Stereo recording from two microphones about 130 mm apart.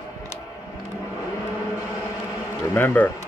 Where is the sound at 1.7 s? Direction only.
25° left (ahead or behind).